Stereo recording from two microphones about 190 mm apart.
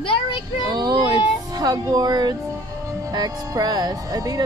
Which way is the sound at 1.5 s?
20° right (ahead or behind).